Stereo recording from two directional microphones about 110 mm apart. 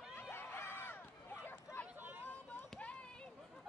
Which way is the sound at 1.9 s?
15° right (ahead or behind).